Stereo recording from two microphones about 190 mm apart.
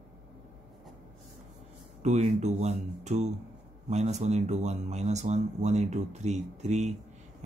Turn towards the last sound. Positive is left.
turn(degrees=-35)  # may be behind; listen again after turning